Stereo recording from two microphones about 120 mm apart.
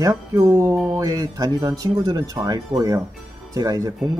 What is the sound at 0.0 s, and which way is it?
Speech, 25° right (ahead or behind).